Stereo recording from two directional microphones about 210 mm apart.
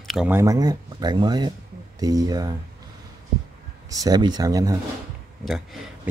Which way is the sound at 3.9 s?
15° right (ahead or behind).